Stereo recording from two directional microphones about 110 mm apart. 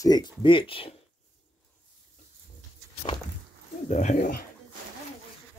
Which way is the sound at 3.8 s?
90° left.